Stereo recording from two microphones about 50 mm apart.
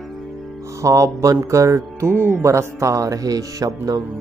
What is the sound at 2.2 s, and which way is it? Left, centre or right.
Speech, right.